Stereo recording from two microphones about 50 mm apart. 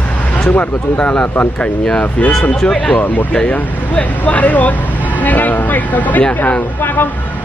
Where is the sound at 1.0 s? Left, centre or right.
Centre.